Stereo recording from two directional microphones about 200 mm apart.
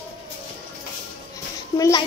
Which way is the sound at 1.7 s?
15° left (ahead or behind).